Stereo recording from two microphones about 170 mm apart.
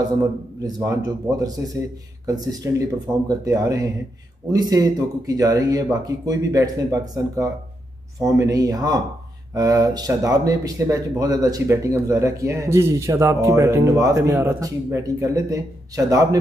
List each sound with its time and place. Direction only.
0.6 s speech: 20° right (ahead or behind)